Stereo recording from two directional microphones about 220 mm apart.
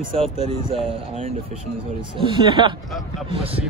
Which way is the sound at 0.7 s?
25° right (ahead or behind).